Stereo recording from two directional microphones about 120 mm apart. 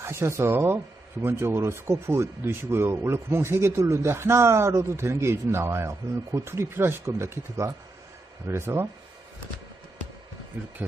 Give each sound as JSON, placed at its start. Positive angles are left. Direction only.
{"t": 0.0, "sound": "speech", "side_deg": -20}
{"t": 10.8, "sound": "speech", "side_deg": -15}